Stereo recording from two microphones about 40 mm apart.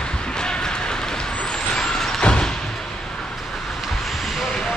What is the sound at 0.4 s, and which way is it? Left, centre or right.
Music, centre.